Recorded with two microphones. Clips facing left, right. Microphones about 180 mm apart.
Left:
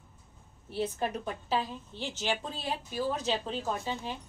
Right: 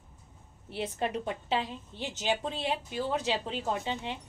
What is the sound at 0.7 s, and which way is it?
A woman's voice, 20° right (ahead or behind).